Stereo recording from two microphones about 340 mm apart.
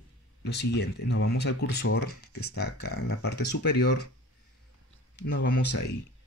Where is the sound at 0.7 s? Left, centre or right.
Left.